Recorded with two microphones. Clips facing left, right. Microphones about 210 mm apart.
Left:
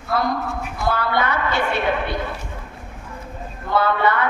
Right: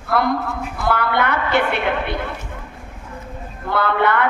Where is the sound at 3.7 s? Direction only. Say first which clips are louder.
Right 1 dB; 60° right (ahead or behind).